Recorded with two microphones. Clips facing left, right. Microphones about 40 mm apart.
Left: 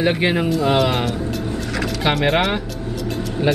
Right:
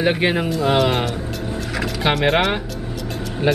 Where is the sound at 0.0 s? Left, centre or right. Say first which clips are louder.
Even; centre.